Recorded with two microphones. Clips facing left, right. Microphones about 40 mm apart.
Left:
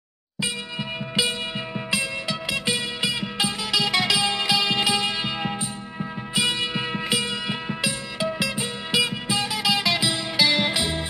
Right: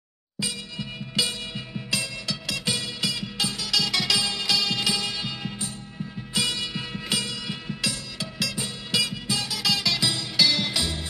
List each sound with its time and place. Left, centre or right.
0.4 s music: left